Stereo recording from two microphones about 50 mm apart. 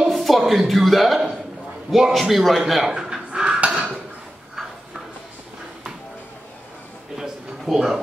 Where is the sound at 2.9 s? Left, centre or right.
Centre.